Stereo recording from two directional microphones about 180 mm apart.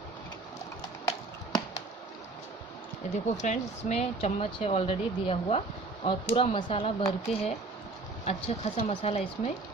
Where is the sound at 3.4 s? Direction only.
40° left (ahead or behind).